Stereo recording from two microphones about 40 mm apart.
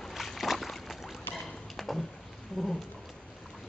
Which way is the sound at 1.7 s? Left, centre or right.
Centre.